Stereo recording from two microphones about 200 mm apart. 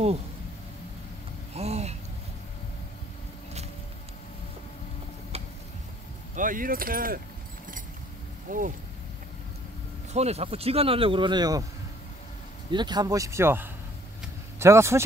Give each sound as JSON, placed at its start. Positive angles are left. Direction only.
{"t": 1.5, "sound": "a sound", "side_deg": -30}
{"t": 5.3, "sound": "a sound", "side_deg": -30}
{"t": 6.3, "sound": "speech", "side_deg": -40}
{"t": 8.5, "sound": "speech", "side_deg": -40}
{"t": 10.1, "sound": "speech", "side_deg": -30}
{"t": 12.7, "sound": "speech", "side_deg": -20}